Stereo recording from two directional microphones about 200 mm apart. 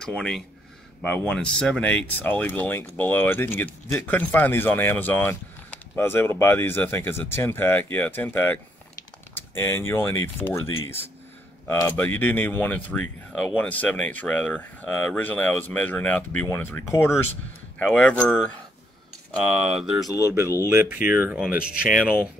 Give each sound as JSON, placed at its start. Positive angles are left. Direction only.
{"t": 0.0, "sound": "speech", "side_deg": 5}
{"t": 19.4, "sound": "speech", "side_deg": 0}
{"t": 20.1, "sound": "speech", "side_deg": 15}
{"t": 20.6, "sound": "speech", "side_deg": -10}